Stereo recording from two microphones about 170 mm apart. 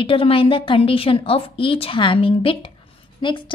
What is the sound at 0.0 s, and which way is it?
A woman's voice, 30° left (ahead or behind).